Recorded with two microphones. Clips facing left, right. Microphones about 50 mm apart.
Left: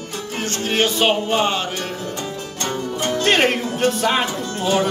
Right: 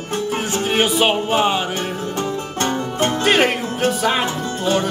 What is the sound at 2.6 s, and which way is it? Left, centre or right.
Music, right.